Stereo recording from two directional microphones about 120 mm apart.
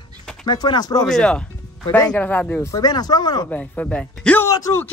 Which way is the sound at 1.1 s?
5° left (ahead or behind).